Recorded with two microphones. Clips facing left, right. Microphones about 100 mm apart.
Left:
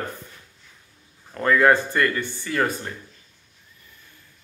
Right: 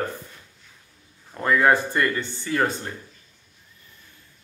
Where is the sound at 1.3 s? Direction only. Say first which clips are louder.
Left 2 dB; 15° right (ahead or behind).